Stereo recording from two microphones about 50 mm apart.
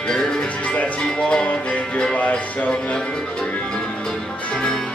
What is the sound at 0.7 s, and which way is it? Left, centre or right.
Music, left.